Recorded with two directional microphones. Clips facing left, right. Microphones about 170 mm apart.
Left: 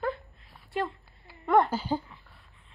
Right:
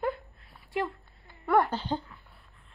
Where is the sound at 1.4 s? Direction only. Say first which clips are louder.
Left 2 dB; 20° left (ahead or behind).